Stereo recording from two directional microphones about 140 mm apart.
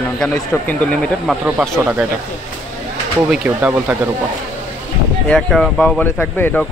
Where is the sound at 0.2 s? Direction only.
5° left (ahead or behind).